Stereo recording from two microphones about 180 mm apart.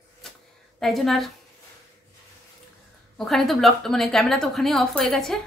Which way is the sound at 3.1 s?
Centre (ahead or behind).